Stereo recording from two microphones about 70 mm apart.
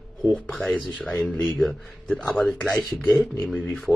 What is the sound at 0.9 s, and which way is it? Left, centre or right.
Speech, centre.